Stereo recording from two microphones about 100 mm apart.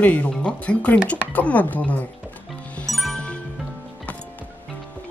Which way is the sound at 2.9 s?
5° left (ahead or behind).